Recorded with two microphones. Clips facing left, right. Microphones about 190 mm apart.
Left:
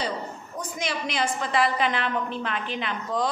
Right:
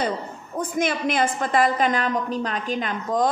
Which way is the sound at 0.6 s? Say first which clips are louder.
Right 7 dB; 50° right (ahead or behind).